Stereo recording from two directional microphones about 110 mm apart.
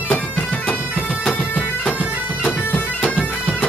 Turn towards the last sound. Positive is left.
turn(degrees=5)  # may be behind; listen again after turning